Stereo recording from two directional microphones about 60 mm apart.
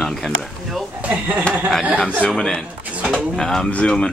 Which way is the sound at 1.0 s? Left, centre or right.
Right.